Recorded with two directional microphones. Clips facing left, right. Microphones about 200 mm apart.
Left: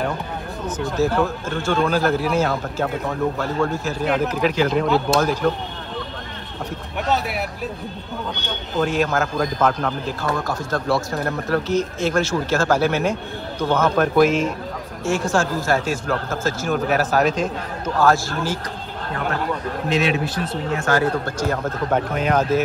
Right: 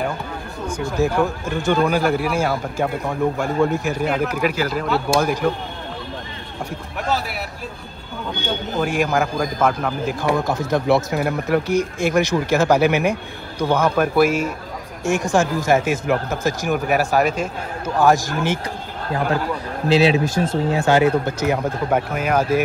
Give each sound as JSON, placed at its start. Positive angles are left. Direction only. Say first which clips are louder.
{"t": 0.9, "sound": "a man's voice", "louder": "right 1 dB", "side_deg": -15}
{"t": 7.1, "sound": "speech", "louder": "left 1 dB", "side_deg": 0}
{"t": 8.7, "sound": "a man's voice", "louder": "even", "side_deg": -10}
{"t": 19.9, "sound": "speech", "louder": "right 6 dB", "side_deg": -40}
{"t": 21.4, "sound": "a man's voice", "louder": "right 2 dB", "side_deg": -10}